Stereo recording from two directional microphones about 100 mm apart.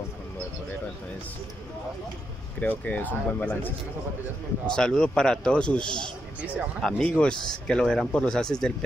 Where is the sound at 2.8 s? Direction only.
15° left (ahead or behind).